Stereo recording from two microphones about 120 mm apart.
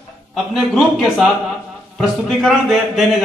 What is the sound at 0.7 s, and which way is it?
A man's voice, centre (ahead or behind).